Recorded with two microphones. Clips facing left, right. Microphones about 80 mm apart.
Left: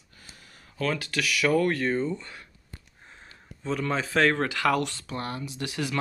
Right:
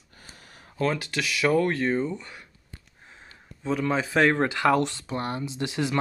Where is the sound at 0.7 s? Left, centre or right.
Right.